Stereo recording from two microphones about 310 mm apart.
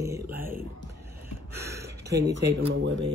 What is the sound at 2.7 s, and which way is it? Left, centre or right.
Speech, right.